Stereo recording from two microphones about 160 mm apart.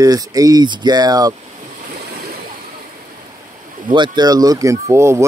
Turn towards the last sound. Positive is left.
turn(degrees=-15)  # may be behind; listen again after turning